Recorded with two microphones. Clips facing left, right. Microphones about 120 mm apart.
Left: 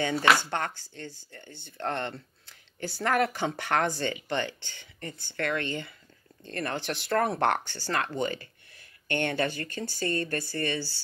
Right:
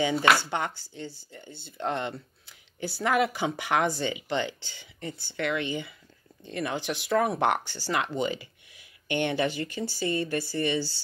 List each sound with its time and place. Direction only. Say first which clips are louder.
0.5 s speech: right 1 dB; 10° right (ahead or behind)
1.5 s speech: right 2 dB; 20° left (ahead or behind)
1.8 s speech: right 2 dB; 10° right (ahead or behind)